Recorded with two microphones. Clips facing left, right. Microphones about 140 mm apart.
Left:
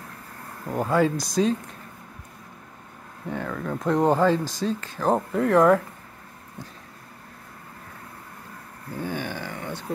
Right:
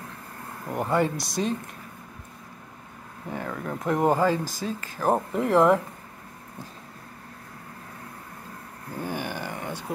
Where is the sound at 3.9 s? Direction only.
10° right (ahead or behind).